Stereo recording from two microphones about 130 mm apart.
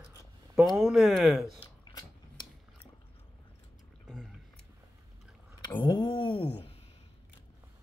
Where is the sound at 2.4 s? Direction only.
35° left (ahead or behind).